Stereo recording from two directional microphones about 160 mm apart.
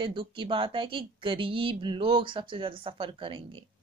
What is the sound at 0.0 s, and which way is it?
Speech, 30° right (ahead or behind).